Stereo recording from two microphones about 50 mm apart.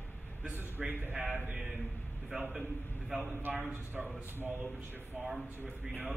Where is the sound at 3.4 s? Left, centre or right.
Right.